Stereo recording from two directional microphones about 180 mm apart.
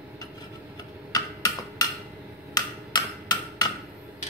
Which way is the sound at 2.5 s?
20° left (ahead or behind).